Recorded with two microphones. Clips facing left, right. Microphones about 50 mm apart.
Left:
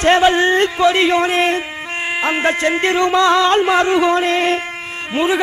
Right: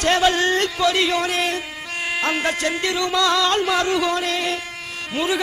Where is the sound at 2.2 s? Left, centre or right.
Left.